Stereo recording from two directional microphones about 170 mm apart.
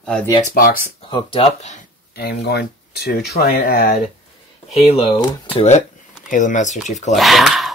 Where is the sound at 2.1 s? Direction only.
70° left (ahead or behind).